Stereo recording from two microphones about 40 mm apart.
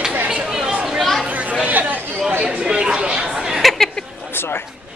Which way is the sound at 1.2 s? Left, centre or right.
Right.